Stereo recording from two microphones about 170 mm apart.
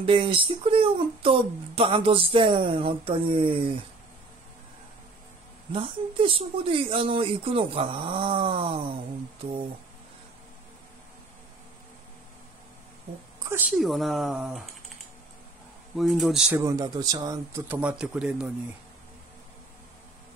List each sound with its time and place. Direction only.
0.0 s speech: 30° right (ahead or behind)
5.7 s speech: 30° right (ahead or behind)
13.4 s a woman's voice: 15° right (ahead or behind)
13.7 s speech: centre (ahead or behind)
16.0 s speech: centre (ahead or behind)
16.5 s speech: 20° right (ahead or behind)